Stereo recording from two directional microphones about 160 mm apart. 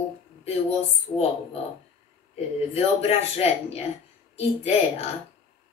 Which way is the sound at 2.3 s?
40° left (ahead or behind).